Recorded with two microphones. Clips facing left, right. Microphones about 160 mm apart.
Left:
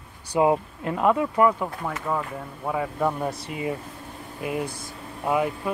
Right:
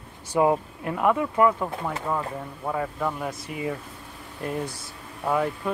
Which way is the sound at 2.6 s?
10° left (ahead or behind).